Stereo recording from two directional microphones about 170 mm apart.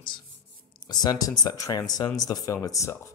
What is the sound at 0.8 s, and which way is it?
Speech, 25° left (ahead or behind).